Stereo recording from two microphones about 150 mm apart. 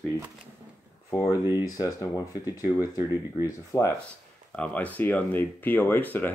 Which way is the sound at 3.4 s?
20° left (ahead or behind).